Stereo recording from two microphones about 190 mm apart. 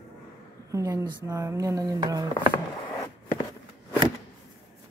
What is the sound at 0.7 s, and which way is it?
Speech, 15° right (ahead or behind).